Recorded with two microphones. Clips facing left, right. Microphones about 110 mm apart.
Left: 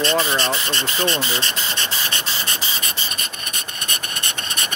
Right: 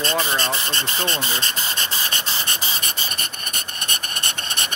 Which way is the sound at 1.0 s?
15° left (ahead or behind).